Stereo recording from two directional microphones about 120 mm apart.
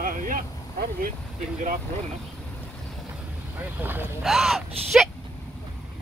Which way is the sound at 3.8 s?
15° right (ahead or behind).